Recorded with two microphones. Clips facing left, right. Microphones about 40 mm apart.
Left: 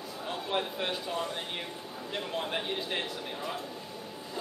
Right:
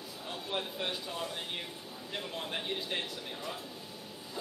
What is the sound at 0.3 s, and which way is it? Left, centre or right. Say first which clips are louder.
Speech: left 5 dB; centre.